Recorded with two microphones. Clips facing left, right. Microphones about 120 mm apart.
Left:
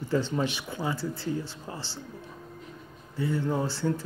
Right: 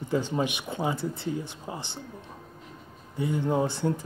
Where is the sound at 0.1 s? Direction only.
15° right (ahead or behind).